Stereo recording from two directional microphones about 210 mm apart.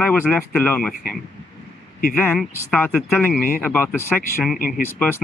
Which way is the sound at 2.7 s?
5° left (ahead or behind).